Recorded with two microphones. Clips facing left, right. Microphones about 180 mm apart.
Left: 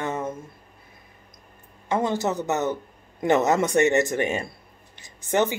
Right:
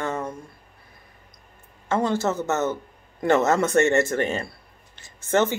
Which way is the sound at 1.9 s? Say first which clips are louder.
Right 1 dB; 15° left (ahead or behind).